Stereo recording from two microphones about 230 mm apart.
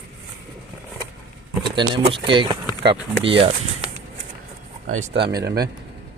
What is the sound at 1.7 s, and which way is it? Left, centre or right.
Speech, right.